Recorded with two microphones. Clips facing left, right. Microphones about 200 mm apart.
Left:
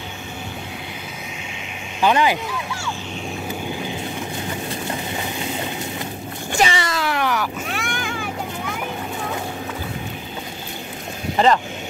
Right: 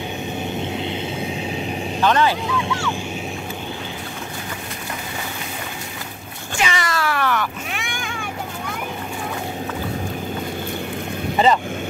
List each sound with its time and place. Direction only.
2.0 s speech: 10° left (ahead or behind)
6.6 s speech: 30° left (ahead or behind)
7.7 s vehicle: centre (ahead or behind)
11.3 s speech: centre (ahead or behind)